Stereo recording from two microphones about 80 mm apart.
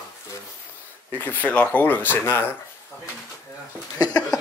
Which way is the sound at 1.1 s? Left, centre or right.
Left.